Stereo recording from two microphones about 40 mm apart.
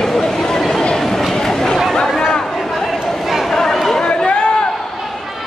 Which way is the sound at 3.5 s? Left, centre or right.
Centre.